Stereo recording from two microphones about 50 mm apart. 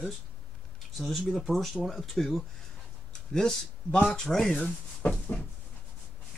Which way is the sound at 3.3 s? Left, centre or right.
Centre.